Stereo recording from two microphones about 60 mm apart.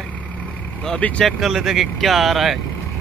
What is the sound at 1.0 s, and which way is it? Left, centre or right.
Speech, left.